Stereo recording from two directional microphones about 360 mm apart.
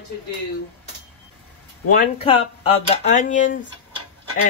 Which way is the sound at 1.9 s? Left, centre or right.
Centre.